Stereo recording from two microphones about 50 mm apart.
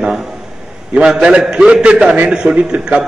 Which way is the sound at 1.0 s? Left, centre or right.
Centre.